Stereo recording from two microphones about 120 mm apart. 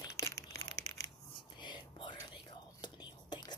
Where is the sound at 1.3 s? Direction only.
40° left (ahead or behind).